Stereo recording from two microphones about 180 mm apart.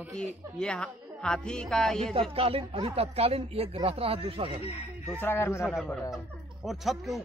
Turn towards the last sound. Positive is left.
turn(degrees=0)  # may be behind; listen again after turning